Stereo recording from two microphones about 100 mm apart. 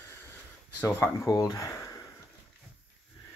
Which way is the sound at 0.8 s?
25° left (ahead or behind).